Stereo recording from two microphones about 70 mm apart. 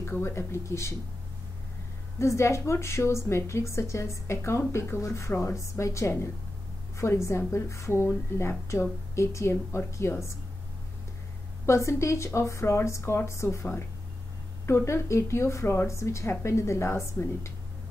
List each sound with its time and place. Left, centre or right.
0.0 s a woman's voice: left
2.1 s a woman's voice: left
11.6 s a woman's voice: left